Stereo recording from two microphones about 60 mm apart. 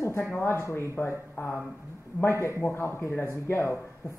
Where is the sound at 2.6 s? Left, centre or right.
Left.